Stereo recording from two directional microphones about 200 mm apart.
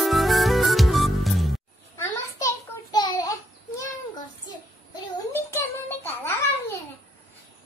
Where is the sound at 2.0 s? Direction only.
15° left (ahead or behind).